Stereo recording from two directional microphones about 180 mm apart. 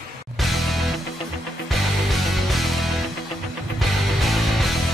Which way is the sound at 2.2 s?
Centre (ahead or behind).